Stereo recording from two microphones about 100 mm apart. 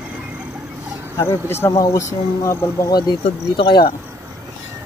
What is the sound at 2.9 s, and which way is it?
Speech, 45° left (ahead or behind).